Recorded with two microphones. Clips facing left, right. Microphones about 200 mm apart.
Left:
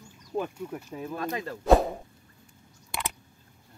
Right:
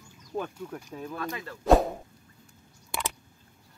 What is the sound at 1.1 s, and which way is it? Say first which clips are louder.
Speech: left 5 dB; 40° left (ahead or behind).